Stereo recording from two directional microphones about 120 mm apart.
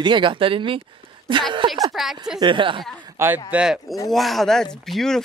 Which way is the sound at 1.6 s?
45° right (ahead or behind).